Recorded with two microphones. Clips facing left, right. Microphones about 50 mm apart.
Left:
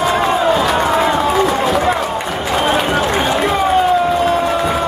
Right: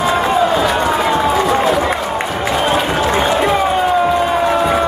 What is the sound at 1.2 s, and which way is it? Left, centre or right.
Run, centre.